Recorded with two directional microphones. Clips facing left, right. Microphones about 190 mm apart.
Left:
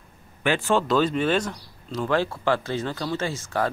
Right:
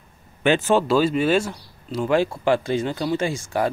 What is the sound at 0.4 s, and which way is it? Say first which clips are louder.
Speech: right 4 dB; 20° right (ahead or behind).